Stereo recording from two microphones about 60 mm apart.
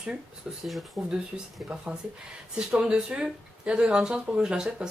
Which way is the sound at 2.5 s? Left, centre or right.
Centre.